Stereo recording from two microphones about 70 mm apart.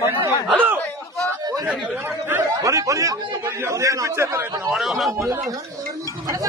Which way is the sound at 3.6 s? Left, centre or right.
Right.